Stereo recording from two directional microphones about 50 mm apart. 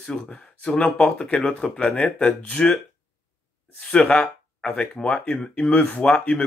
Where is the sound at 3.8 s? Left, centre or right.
Left.